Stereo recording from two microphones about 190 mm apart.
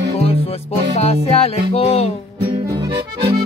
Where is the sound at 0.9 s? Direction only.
35° left (ahead or behind).